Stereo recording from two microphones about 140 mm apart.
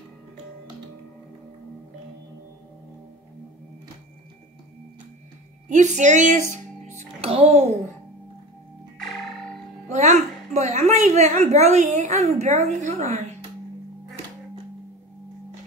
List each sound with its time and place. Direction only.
5.7 s a woman's voice: 60° right (ahead or behind)
7.2 s a child's voice: 45° right (ahead or behind)
9.8 s music: 55° right (ahead or behind)
10.5 s a woman's voice: 50° right (ahead or behind)